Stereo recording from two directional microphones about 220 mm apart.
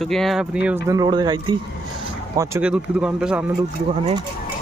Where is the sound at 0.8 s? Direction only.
20° right (ahead or behind).